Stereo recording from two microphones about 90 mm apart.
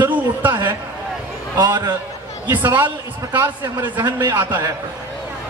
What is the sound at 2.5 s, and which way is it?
A man's voice, 25° right (ahead or behind).